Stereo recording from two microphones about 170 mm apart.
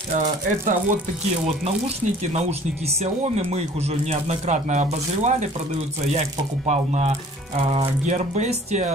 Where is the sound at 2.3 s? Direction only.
40° right (ahead or behind).